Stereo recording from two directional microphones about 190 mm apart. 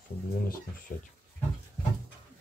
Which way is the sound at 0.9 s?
40° left (ahead or behind).